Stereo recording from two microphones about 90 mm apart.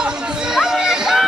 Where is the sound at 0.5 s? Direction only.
5° right (ahead or behind).